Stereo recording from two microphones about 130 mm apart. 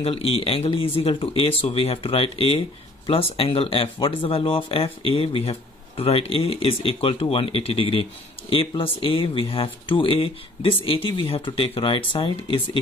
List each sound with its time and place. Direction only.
0.0 s speech: 50° left (ahead or behind)